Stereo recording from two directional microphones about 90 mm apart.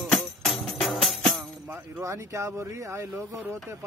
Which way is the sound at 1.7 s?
35° right (ahead or behind).